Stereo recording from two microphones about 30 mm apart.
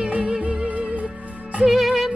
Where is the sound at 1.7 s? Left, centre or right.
Centre.